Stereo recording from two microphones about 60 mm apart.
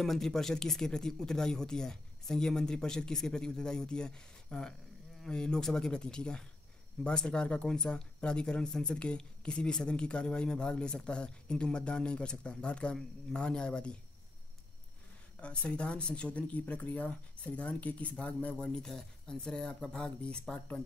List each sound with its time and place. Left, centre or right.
0.0 s speech: centre
15.4 s speech: centre
18.6 s speech: centre